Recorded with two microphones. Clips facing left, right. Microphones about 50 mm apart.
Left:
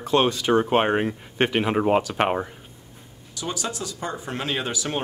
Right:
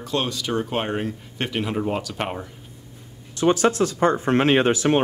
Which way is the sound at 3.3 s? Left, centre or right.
Right.